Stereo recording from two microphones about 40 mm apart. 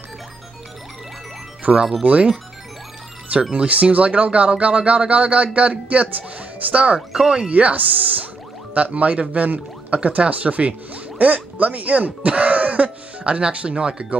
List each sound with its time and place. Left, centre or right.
1.7 s speech: right
2.0 s speech: right
3.5 s speech: right
7.2 s speech: right
7.5 s speech: right